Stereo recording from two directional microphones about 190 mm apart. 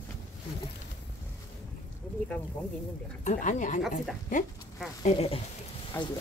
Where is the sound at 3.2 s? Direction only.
40° left (ahead or behind).